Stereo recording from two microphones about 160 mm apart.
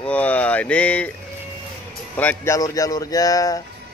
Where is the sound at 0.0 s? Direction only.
10° left (ahead or behind).